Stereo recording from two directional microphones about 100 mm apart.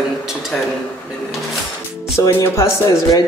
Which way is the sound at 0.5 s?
15° left (ahead or behind).